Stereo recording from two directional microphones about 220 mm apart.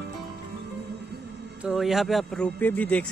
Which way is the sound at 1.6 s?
Centre (ahead or behind).